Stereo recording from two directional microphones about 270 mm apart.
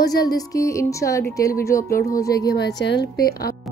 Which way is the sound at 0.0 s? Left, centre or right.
Centre.